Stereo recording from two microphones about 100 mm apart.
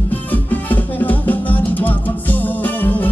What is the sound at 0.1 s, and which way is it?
Music, 15° left (ahead or behind).